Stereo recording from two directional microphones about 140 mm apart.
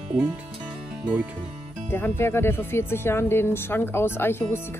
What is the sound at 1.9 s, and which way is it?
Speech, 15° left (ahead or behind).